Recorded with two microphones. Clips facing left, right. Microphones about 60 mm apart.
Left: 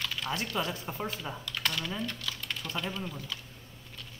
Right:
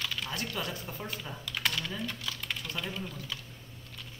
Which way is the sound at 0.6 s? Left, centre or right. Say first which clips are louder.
Left 4 dB; left.